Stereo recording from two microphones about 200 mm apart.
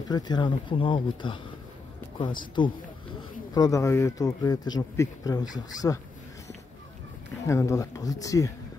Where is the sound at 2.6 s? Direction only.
25° left (ahead or behind).